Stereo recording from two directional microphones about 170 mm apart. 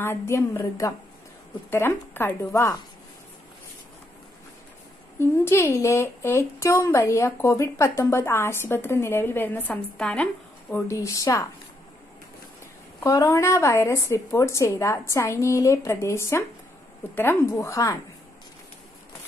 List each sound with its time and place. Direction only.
0.0 s speech: 15° left (ahead or behind)
5.2 s speech: 15° left (ahead or behind)
10.9 s speech: 15° left (ahead or behind)
13.0 s speech: 20° left (ahead or behind)